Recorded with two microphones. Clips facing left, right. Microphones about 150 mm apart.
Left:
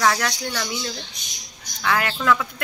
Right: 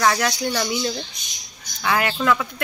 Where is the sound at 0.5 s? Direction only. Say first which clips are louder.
Right 5 dB; 20° right (ahead or behind).